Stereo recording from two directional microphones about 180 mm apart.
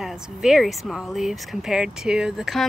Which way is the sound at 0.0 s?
Centre (ahead or behind).